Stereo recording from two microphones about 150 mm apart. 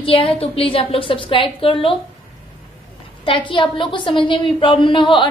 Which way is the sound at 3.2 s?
35° left (ahead or behind).